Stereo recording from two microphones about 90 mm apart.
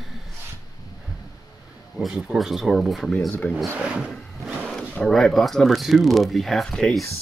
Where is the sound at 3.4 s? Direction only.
15° left (ahead or behind).